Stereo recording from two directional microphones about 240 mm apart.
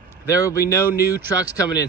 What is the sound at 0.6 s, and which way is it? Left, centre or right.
Speech, left.